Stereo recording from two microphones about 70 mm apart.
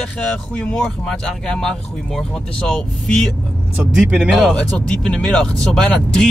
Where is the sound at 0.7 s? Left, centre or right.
Centre.